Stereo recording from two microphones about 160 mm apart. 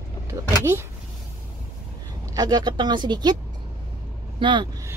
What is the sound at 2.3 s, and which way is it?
A woman's voice, 25° right (ahead or behind).